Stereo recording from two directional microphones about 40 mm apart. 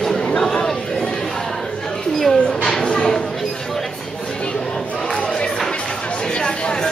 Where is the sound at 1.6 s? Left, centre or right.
Centre.